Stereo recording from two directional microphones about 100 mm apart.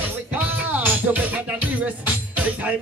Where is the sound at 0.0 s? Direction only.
15° right (ahead or behind).